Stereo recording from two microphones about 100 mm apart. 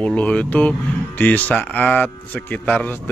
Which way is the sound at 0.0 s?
10° left (ahead or behind).